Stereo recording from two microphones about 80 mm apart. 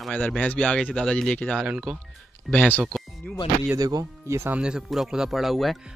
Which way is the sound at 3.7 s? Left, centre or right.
Right.